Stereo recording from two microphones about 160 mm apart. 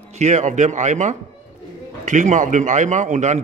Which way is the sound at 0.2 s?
50° right (ahead or behind).